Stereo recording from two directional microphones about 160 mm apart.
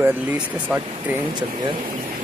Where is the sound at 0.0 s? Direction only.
10° right (ahead or behind).